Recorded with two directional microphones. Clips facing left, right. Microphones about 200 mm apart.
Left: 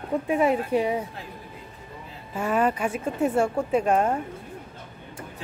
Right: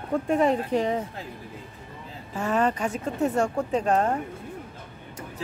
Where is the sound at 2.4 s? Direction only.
10° left (ahead or behind).